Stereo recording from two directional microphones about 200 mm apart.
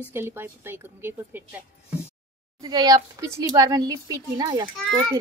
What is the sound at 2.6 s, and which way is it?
A woman's voice, 20° right (ahead or behind).